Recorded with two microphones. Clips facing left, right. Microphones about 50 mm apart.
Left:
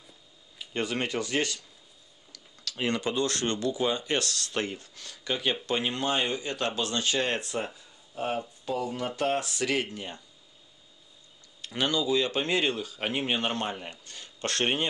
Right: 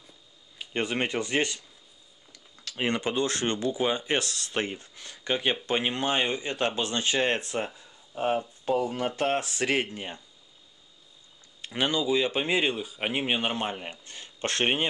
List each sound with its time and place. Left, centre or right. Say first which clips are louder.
0.6 s speech: right 2 dB; right
11.6 s speech: right 1 dB; right